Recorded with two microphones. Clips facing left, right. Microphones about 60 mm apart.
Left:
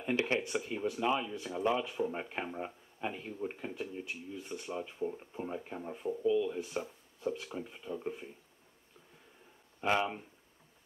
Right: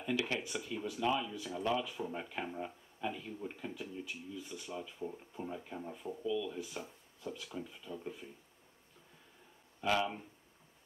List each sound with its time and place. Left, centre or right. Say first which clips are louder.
0.0 s speech: left 4 dB; left
9.8 s speech: left 2 dB; left